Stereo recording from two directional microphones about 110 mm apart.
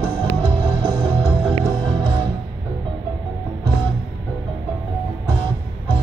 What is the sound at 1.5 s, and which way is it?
Music, 50° right (ahead or behind).